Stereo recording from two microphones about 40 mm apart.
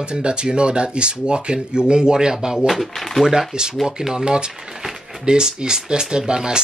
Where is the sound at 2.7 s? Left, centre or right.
Centre.